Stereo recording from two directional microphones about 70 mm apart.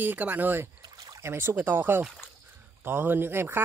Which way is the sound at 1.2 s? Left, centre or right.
Right.